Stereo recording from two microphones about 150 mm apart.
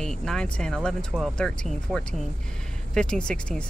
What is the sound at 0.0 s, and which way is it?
Speech, 5° left (ahead or behind).